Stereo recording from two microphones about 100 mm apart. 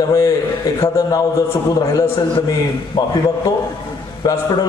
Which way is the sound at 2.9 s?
50° left (ahead or behind).